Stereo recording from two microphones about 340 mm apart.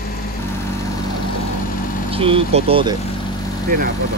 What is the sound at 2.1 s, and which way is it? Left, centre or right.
Speech, centre.